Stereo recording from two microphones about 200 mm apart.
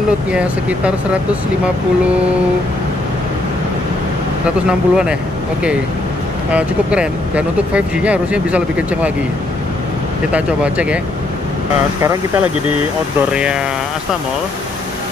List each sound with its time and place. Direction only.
0.3 s speech: 5° right (ahead or behind)
4.6 s speech: 5° right (ahead or behind)
6.5 s speech: 5° right (ahead or behind)
10.3 s speech: 5° right (ahead or behind)
12.0 s speech: 15° right (ahead or behind)
13.3 s speech: 5° right (ahead or behind)